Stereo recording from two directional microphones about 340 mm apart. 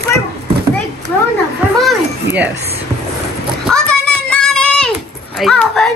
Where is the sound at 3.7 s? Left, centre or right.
Centre.